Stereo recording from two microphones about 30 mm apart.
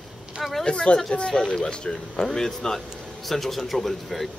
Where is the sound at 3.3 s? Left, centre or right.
Centre.